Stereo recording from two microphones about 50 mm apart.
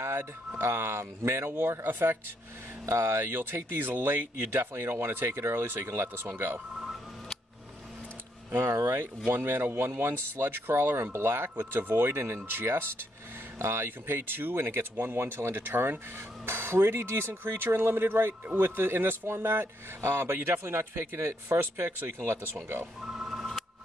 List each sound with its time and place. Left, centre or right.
0.0 s a sound: right
0.6 s speech: right
1.5 s speech: right
2.9 s speech: right
8.5 s speech: right
9.3 s speech: right
23.1 s a sound: centre